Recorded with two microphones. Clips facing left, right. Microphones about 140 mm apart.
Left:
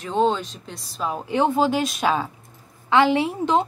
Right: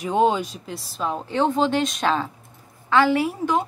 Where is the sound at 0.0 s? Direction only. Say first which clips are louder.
Right 1 dB; 10° right (ahead or behind).